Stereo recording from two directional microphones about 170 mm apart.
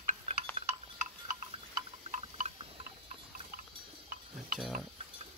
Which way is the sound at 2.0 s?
40° right (ahead or behind).